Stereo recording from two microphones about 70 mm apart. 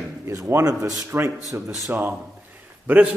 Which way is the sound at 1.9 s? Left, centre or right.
Right.